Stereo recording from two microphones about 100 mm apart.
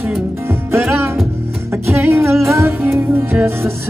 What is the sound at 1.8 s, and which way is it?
Music, 25° right (ahead or behind).